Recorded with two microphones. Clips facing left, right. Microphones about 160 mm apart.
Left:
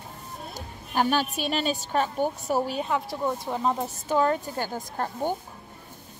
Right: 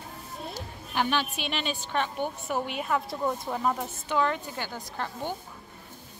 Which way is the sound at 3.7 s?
40° left (ahead or behind).